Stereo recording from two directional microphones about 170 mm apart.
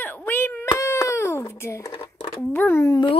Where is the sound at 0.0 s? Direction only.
10° left (ahead or behind); by 2.3 s 25° left (ahead or behind).